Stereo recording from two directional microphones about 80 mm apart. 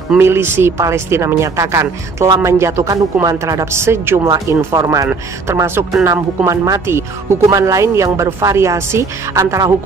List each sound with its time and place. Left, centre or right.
0.2 s speech: right